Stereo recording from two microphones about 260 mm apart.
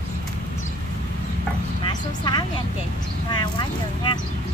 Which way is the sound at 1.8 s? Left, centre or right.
Centre.